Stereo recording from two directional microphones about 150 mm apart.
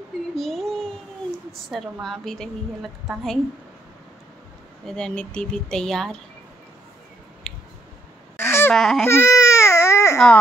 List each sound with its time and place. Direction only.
0.4 s child singing: centre (ahead or behind)
1.5 s a woman's voice: centre (ahead or behind)
4.8 s a woman's voice: 5° left (ahead or behind)
8.4 s a sound: 15° left (ahead or behind)
8.7 s a woman's voice: 5° left (ahead or behind)
9.0 s baby cry: 20° left (ahead or behind)
10.1 s speech: 5° left (ahead or behind)